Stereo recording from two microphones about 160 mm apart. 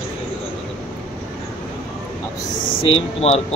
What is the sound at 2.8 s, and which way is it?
Speech, 40° left (ahead or behind).